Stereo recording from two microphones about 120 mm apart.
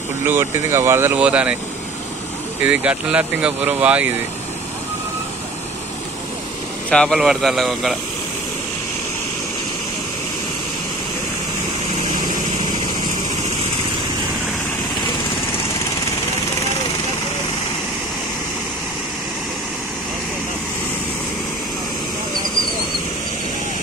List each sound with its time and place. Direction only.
0.3 s speech: 20° right (ahead or behind)
2.6 s speech: 10° right (ahead or behind)
6.9 s a man's voice: 5° left (ahead or behind)